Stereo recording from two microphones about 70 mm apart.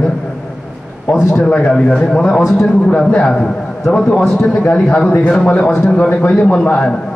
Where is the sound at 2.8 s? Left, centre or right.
Centre.